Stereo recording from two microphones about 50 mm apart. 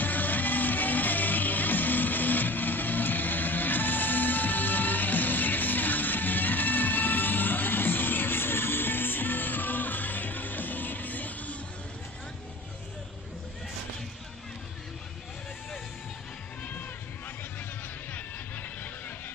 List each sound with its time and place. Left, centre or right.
0.0 s music: left
18.1 s music: left